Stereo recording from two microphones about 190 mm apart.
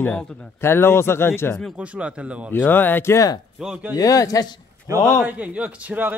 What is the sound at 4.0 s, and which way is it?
Speech, 20° left (ahead or behind).